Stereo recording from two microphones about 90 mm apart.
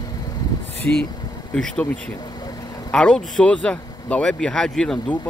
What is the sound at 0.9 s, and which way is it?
Speech, 20° left (ahead or behind).